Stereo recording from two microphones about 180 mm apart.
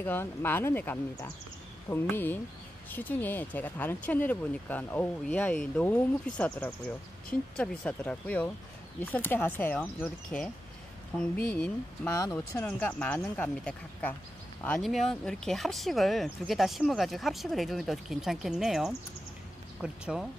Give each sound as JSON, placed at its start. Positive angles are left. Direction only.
{"t": 0.0, "sound": "speech", "side_deg": 10}